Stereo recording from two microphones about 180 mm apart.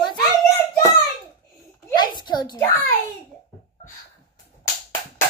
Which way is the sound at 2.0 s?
25° left (ahead or behind).